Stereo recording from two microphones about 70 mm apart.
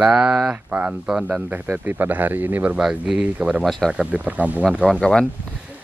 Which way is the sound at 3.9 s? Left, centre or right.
Centre.